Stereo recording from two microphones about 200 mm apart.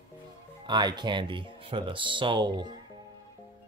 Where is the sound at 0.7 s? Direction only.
20° right (ahead or behind).